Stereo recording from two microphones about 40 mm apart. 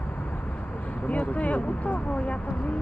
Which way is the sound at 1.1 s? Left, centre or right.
Left.